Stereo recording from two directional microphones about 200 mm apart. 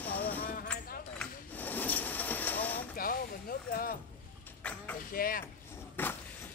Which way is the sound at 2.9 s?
45° left (ahead or behind).